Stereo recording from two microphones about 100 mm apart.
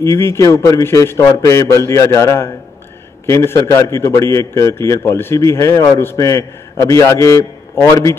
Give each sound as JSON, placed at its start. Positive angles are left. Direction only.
{"t": 0.0, "sound": "a man's voice", "side_deg": 25}